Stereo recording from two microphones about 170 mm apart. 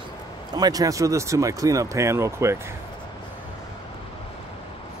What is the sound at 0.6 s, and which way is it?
Speech, 20° right (ahead or behind).